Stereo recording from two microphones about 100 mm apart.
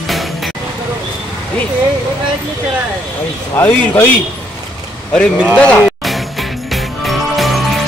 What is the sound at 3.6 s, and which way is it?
Speech, 20° left (ahead or behind).